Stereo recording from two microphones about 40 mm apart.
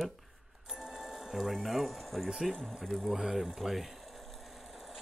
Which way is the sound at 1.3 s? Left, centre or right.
Centre.